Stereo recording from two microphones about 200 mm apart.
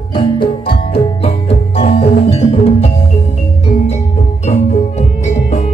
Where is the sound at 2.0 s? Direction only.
30° left (ahead or behind).